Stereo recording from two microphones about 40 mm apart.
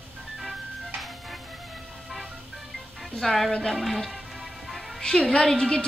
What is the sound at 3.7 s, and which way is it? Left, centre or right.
Music, centre.